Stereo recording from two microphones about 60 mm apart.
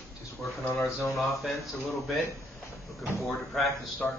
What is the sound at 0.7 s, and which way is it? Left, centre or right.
Speech, centre.